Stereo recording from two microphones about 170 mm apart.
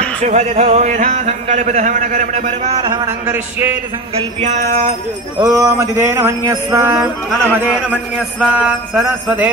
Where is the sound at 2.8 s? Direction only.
20° right (ahead or behind).